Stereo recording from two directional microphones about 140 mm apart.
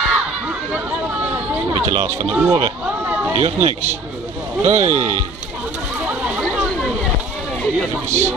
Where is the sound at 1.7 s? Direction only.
45° right (ahead or behind).